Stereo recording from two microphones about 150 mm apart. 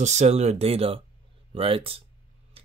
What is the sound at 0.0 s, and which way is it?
Speech, 50° right (ahead or behind).